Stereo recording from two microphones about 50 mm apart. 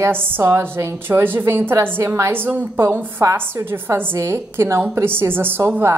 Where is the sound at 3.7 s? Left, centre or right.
Right.